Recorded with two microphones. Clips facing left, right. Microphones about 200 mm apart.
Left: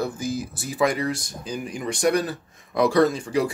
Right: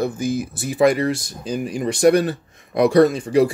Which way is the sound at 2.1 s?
65° right (ahead or behind).